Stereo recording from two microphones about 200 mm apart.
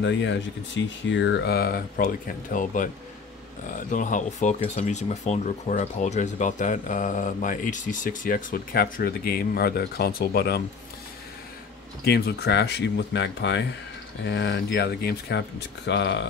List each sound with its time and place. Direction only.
0.0 s speech: 65° left (ahead or behind)
12.0 s speech: 55° left (ahead or behind)